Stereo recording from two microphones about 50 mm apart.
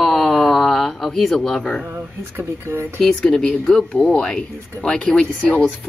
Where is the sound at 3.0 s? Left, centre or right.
Centre.